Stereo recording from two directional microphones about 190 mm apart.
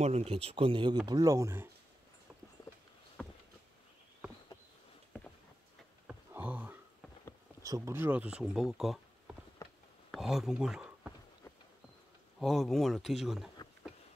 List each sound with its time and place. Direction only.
0.0 s speech: 35° right (ahead or behind); by 1.7 s 15° right (ahead or behind)
6.0 s a sound: 10° right (ahead or behind)
7.6 s speech: 15° right (ahead or behind)
9.6 s a sound: 15° left (ahead or behind)
10.1 s speech: centre (ahead or behind)
12.4 s speech: centre (ahead or behind)